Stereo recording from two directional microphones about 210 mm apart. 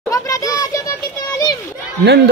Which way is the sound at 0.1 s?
15° left (ahead or behind).